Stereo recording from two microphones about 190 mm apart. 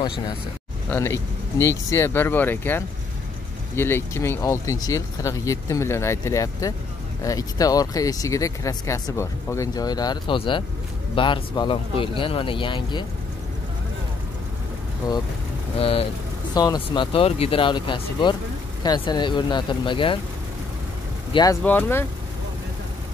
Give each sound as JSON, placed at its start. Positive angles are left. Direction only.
{"t": 0.8, "sound": "speech", "side_deg": 15}
{"t": 15.8, "sound": "speech", "side_deg": 30}
{"t": 21.3, "sound": "speech", "side_deg": 20}
{"t": 21.6, "sound": "speech", "side_deg": 10}